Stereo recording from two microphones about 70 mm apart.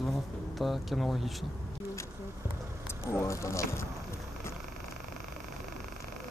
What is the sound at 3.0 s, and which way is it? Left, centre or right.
Speech, left.